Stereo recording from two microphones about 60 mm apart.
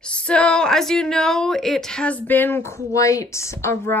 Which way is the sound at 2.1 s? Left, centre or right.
Left.